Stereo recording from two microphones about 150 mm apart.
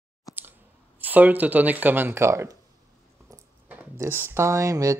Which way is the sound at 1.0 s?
10° right (ahead or behind).